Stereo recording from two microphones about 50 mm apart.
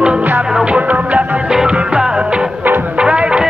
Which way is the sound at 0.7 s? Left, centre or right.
Right.